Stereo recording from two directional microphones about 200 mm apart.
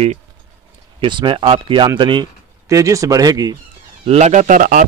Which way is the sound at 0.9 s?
25° right (ahead or behind).